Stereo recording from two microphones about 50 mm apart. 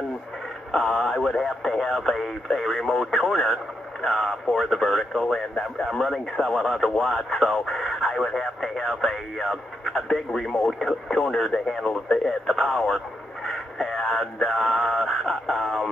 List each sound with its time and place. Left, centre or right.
0.7 s speech: centre